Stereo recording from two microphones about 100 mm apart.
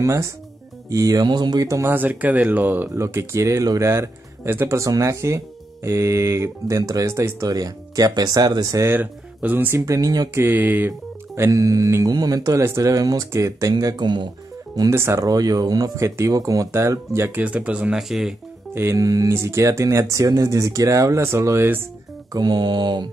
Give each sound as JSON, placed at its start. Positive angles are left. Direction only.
{"t": 0.0, "sound": "speech", "side_deg": -30}
{"t": 1.7, "sound": "speech", "side_deg": -25}
{"t": 8.8, "sound": "speech", "side_deg": -20}
{"t": 10.4, "sound": "speech", "side_deg": -20}
{"t": 10.9, "sound": "speech", "side_deg": -30}
{"t": 14.8, "sound": "speech", "side_deg": -30}
{"t": 18.8, "sound": "speech", "side_deg": -30}
{"t": 22.3, "sound": "mantra", "side_deg": -45}